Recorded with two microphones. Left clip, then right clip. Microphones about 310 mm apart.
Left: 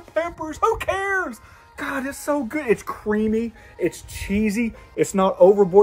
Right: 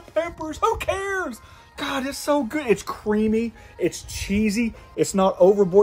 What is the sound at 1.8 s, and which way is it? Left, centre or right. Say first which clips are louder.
Speech: right 1 dB; centre.